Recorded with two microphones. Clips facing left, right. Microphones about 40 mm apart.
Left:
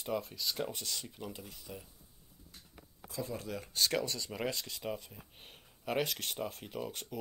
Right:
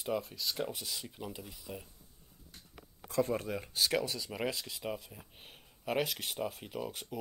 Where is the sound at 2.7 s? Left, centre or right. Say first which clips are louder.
Right 10 dB; right.